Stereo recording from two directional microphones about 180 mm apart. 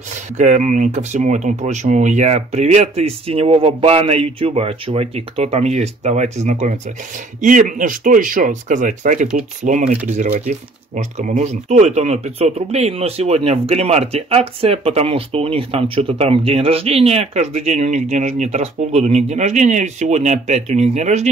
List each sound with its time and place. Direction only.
0.4 s speech: 40° right (ahead or behind)